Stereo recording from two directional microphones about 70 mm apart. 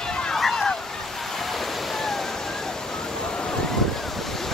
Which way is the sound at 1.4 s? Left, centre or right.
Centre.